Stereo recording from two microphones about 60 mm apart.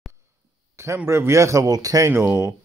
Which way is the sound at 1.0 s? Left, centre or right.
Right.